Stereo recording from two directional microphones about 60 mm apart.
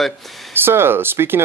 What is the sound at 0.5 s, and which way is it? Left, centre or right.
Speech, right.